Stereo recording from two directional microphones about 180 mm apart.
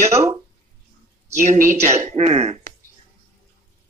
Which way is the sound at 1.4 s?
45° right (ahead or behind).